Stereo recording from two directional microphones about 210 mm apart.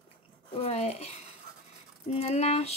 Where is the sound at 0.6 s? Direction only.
30° left (ahead or behind).